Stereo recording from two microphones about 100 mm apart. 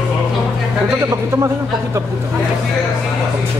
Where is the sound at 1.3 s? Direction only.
30° right (ahead or behind).